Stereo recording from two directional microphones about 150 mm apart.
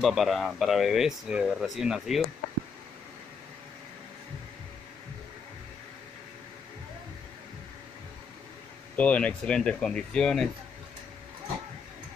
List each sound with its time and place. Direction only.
0.0 s speech: centre (ahead or behind)
8.9 s speech: 10° left (ahead or behind)